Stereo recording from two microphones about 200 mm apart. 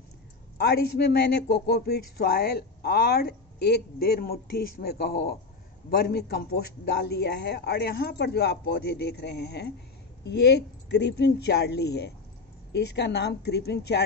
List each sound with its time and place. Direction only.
0.6 s a man's voice: 50° left (ahead or behind)